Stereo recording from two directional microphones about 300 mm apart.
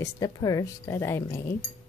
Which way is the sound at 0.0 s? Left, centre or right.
Centre.